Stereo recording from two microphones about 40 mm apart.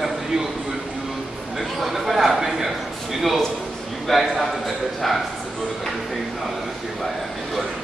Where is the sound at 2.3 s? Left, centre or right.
Centre.